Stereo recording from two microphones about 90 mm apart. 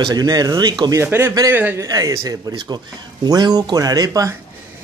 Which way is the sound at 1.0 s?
25° right (ahead or behind).